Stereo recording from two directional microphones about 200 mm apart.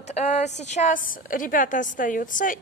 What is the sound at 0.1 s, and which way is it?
A woman's voice, 35° left (ahead or behind).